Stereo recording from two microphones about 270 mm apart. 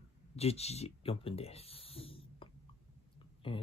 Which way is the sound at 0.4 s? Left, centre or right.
Left.